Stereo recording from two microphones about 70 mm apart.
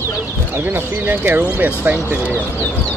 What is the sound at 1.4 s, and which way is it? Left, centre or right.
Speech, right.